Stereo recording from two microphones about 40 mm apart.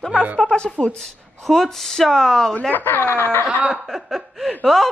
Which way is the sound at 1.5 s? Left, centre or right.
Centre.